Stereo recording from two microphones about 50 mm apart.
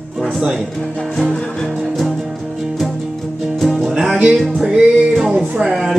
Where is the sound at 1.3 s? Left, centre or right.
Centre.